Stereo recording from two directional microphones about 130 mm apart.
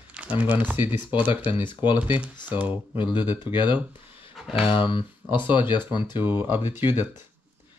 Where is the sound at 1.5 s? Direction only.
40° left (ahead or behind).